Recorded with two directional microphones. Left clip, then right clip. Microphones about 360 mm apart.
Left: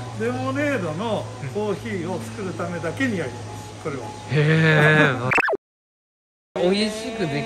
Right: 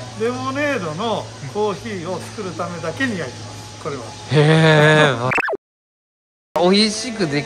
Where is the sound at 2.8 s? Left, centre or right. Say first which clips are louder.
Right 2 dB; centre.